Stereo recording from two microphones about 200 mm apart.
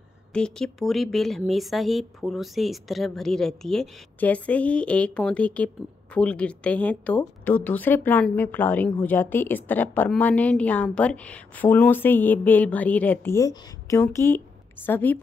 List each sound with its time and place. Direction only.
0.3 s a woman's voice: 5° left (ahead or behind)